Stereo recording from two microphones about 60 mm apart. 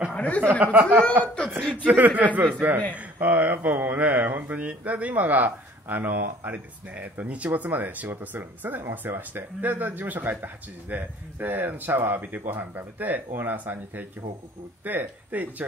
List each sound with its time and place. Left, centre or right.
0.1 s speech: left
0.6 s speech: right
1.2 s speech: centre
1.9 s speech: right